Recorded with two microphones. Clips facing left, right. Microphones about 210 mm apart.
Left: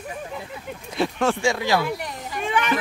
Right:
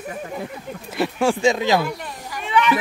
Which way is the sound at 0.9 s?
5° right (ahead or behind).